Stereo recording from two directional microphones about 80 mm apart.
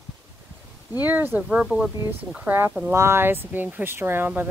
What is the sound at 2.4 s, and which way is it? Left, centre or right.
Speech, right.